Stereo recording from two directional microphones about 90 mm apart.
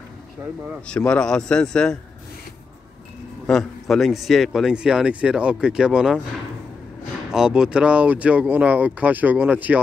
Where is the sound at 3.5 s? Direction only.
5° left (ahead or behind).